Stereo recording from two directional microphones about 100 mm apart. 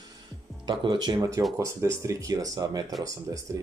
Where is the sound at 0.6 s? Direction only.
50° right (ahead or behind).